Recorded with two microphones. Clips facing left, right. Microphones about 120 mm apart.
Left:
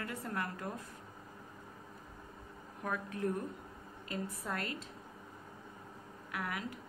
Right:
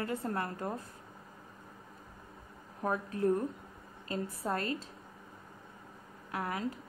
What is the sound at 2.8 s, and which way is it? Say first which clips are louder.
Speech: right 6 dB; 35° right (ahead or behind).